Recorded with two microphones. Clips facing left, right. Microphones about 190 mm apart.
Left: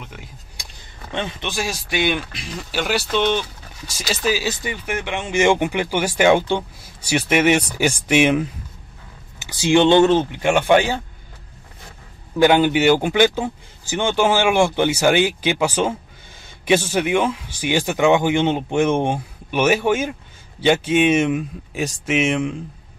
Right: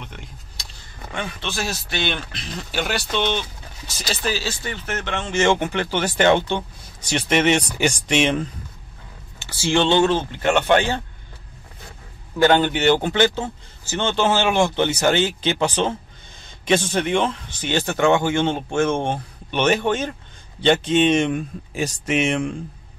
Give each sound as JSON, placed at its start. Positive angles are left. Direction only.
{"t": 0.0, "sound": "speech", "side_deg": 5}
{"t": 1.1, "sound": "speech", "side_deg": 25}
{"t": 1.5, "sound": "speech", "side_deg": 10}
{"t": 9.5, "sound": "speech", "side_deg": 15}
{"t": 12.4, "sound": "speech", "side_deg": 10}